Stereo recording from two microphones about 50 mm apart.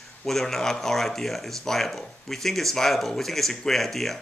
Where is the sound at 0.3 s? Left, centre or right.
Centre.